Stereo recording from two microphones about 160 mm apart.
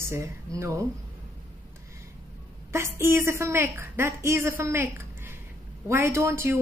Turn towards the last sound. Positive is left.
turn(degrees=-15)  # may be behind; listen again after turning